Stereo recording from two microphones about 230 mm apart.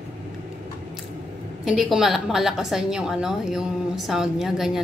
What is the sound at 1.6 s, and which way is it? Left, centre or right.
A woman's voice, centre.